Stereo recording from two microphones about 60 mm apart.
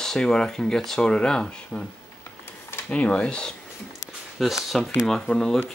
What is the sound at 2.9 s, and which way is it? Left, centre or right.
Speech, left.